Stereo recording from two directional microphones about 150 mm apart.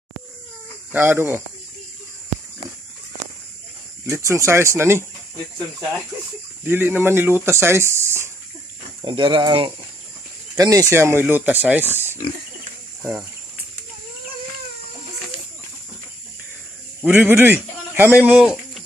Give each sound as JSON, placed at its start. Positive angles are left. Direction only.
{"t": 0.9, "sound": "speech", "side_deg": -15}
{"t": 4.0, "sound": "speech", "side_deg": -20}
{"t": 6.6, "sound": "speech", "side_deg": -15}
{"t": 9.0, "sound": "speech", "side_deg": -30}
{"t": 10.5, "sound": "speech", "side_deg": -25}
{"t": 17.0, "sound": "speech", "side_deg": -10}